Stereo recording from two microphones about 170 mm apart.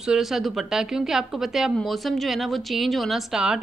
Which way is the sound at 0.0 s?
5° right (ahead or behind).